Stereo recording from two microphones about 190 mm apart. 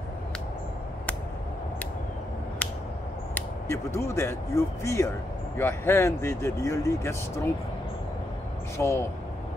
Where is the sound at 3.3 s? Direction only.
15° left (ahead or behind).